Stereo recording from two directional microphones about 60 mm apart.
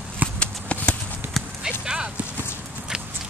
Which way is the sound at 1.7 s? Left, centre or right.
Centre.